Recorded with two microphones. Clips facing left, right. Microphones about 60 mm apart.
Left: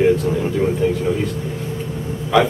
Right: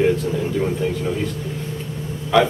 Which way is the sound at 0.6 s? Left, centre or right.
Centre.